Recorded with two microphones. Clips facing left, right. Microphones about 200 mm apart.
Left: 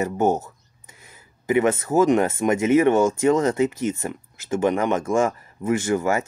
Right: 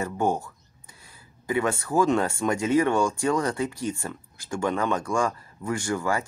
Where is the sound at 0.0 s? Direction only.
20° left (ahead or behind).